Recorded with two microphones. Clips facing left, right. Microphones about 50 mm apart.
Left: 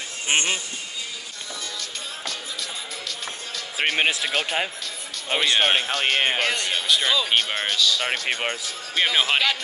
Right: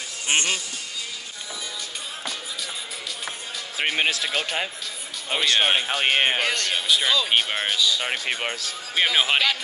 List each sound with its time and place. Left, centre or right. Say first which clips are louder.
0.3 s speech: left 1 dB; left
3.7 s speech: left 1 dB; centre
5.9 s speech: right 1 dB; centre
8.0 s speech: left 1 dB; centre